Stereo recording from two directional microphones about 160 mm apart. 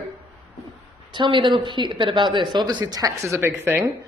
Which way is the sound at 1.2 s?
30° right (ahead or behind).